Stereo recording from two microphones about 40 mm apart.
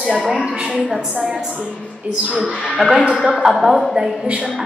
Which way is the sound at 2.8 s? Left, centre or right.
Right.